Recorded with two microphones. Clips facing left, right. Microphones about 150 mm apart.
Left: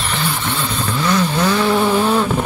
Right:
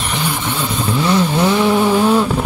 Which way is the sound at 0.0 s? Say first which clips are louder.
Right 1 dB; 10° right (ahead or behind).